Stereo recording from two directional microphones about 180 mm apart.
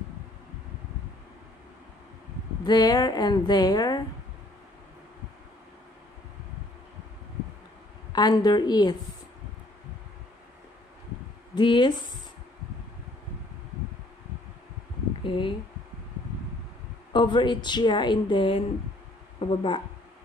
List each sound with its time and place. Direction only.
2.6 s a woman's voice: 20° left (ahead or behind)
8.1 s a woman's voice: 25° left (ahead or behind)
11.5 s a woman's voice: 25° left (ahead or behind)
15.2 s a woman's voice: 30° left (ahead or behind)
17.1 s a woman's voice: 25° left (ahead or behind)